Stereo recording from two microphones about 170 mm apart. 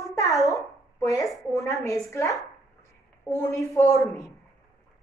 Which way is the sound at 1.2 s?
Centre (ahead or behind).